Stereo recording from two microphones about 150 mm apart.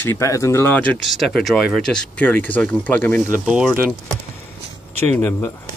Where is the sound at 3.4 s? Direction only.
5° right (ahead or behind).